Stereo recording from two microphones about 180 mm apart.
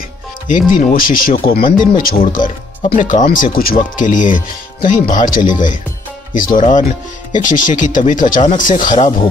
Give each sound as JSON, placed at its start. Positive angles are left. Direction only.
{"t": 0.5, "sound": "speech", "side_deg": 45}